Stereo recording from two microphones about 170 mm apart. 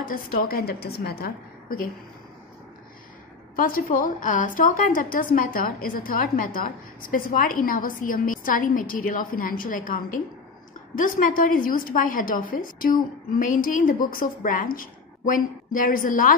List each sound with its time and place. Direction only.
0.1 s a woman's voice: 60° left (ahead or behind)
3.5 s a woman's voice: 60° left (ahead or behind)